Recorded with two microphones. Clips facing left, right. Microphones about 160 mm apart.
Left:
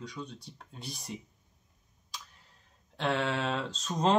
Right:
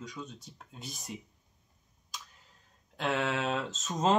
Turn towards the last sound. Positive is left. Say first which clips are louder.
# left 1 dB
turn(degrees=0)  # may be behind; listen again after turning